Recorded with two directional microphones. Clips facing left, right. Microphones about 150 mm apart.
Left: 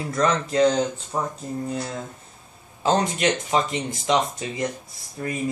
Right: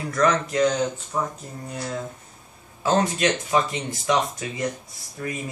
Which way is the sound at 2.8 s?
20° left (ahead or behind).